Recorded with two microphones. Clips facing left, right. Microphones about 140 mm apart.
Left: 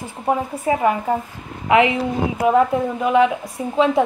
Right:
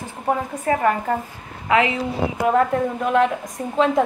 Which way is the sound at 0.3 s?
10° left (ahead or behind).